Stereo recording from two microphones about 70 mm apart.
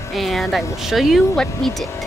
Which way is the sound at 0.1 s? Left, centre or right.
Centre.